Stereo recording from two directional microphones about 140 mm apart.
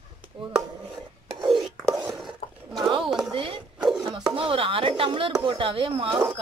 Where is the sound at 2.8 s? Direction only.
35° right (ahead or behind).